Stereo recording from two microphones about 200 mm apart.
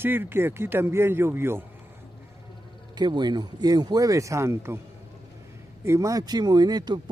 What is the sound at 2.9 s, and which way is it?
Speech, 20° right (ahead or behind).